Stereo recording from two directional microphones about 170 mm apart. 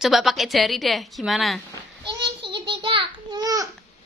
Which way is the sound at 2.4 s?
30° right (ahead or behind).